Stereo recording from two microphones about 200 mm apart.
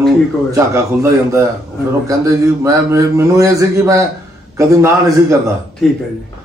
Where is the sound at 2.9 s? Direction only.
15° right (ahead or behind).